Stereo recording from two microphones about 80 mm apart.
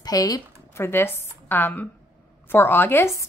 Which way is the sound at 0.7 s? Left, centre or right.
Left.